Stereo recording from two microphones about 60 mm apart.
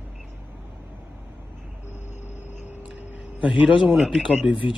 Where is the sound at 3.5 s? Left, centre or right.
Centre.